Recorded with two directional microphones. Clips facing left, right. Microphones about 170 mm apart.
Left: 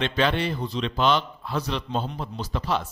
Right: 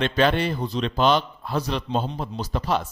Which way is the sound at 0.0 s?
45° right (ahead or behind).